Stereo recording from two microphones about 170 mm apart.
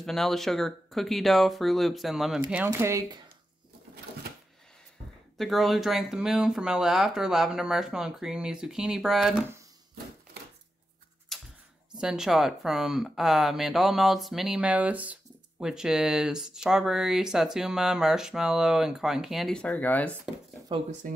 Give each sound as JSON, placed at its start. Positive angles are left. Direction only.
{"t": 0.0, "sound": "speech", "side_deg": 0}
{"t": 2.5, "sound": "speech", "side_deg": -15}
{"t": 5.4, "sound": "speech", "side_deg": 0}
{"t": 11.3, "sound": "a sound", "side_deg": 0}
{"t": 12.0, "sound": "speech", "side_deg": -5}
{"t": 21.0, "sound": "speech", "side_deg": -50}